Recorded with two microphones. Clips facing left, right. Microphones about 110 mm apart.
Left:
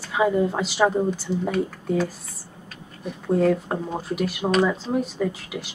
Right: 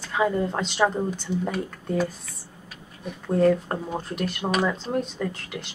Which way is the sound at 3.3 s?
5° left (ahead or behind).